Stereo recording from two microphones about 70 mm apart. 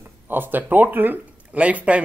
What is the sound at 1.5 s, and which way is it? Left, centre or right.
Speech, centre.